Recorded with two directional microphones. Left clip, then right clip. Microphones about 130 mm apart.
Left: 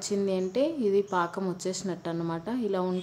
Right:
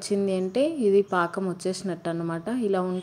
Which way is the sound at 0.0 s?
20° right (ahead or behind).